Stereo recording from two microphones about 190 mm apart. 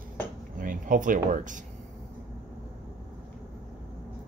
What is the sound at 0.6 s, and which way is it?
Speech, 45° right (ahead or behind).